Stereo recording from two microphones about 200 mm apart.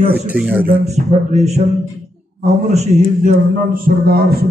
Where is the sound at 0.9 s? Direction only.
35° right (ahead or behind).